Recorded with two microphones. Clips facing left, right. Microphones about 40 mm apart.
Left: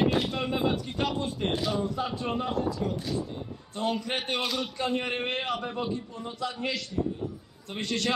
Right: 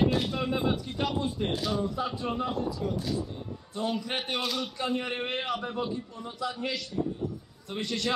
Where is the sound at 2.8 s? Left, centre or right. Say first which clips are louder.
Left 1 dB; left.